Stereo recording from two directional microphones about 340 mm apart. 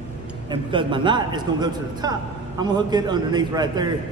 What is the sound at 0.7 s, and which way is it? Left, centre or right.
A man's voice, centre.